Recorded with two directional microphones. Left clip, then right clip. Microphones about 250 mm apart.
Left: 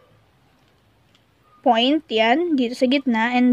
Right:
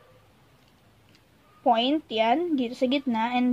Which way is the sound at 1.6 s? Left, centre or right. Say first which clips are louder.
Left 5 dB; left.